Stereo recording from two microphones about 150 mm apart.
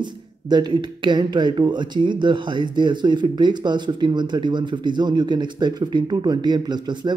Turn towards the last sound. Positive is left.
turn(degrees=-30)  # may be behind; listen again after turning